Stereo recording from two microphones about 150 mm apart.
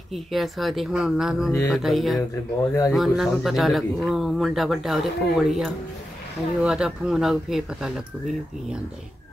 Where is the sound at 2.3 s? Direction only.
20° left (ahead or behind).